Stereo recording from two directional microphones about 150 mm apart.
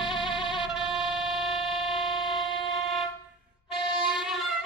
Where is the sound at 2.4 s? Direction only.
35° left (ahead or behind).